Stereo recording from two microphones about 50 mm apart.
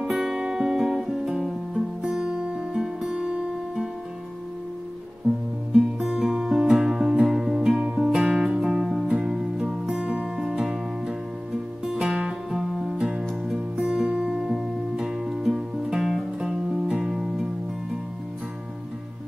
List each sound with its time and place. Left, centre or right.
0.0 s guitar: centre
2.0 s music: centre
5.7 s music: centre
7.8 s music: right; by 12.9 s centre
12.9 s music: centre
14.6 s music: centre
16.3 s music: centre